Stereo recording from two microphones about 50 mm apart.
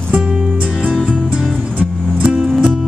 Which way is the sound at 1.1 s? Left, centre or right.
Centre.